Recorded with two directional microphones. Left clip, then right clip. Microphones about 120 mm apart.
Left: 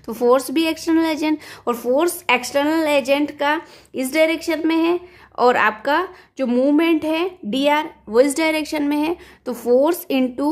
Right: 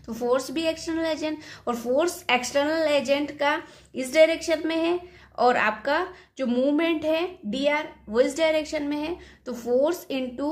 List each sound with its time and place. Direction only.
0.0 s a woman's voice: 55° left (ahead or behind)